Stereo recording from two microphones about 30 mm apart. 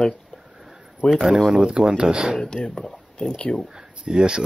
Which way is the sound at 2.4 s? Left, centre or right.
Left.